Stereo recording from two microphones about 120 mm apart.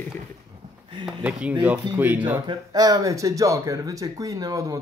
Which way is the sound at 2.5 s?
35° right (ahead or behind).